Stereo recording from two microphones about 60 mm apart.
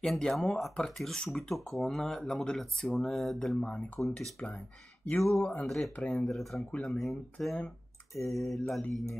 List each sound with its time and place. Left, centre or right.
0.0 s speech: centre
3.6 s speech: centre
5.2 s speech: centre
5.9 s speech: left
6.2 s speech: centre